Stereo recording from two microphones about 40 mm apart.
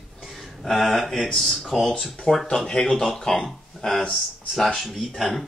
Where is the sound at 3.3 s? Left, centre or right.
Centre.